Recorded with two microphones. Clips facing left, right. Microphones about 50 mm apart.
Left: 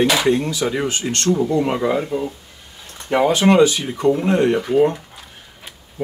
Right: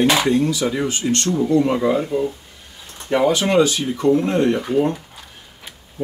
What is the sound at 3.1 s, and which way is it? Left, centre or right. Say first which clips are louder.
Speech: left 2 dB; centre.